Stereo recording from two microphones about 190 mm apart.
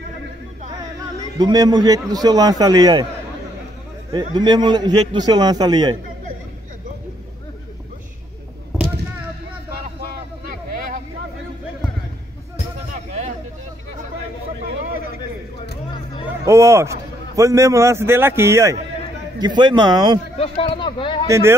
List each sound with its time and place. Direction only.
1.4 s a man's voice: 20° right (ahead or behind)
4.1 s a man's voice: 25° right (ahead or behind)
16.4 s a man's voice: 15° right (ahead or behind)
20.3 s speech: 30° left (ahead or behind)
21.3 s a man's voice: 15° right (ahead or behind)